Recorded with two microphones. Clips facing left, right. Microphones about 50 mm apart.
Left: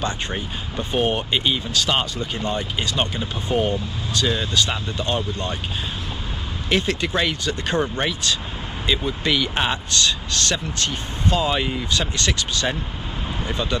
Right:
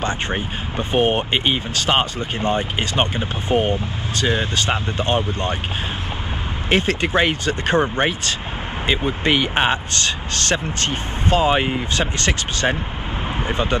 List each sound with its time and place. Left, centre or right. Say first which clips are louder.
0.0 s speech: right 3 dB; right
6.7 s speech: right 3 dB; right